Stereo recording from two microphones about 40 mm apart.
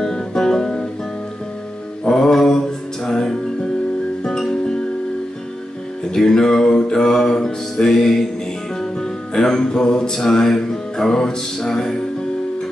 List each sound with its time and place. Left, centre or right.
0.0 s music: centre
2.0 s mantra: centre
3.1 s music: centre
6.1 s music: centre